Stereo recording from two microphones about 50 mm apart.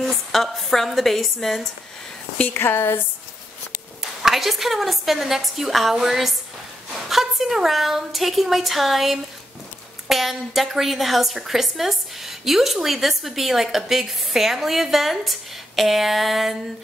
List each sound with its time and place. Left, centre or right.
0.0 s a woman's voice: centre
2.5 s speech: left
4.2 s a woman's voice: centre